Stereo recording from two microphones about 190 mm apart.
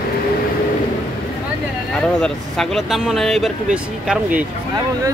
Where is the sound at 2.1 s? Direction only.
5° left (ahead or behind).